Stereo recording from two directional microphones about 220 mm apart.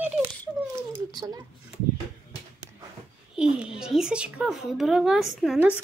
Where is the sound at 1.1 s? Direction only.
15° right (ahead or behind).